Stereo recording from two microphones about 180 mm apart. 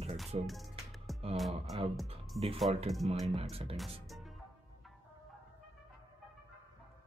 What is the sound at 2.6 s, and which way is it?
Speech, 35° right (ahead or behind).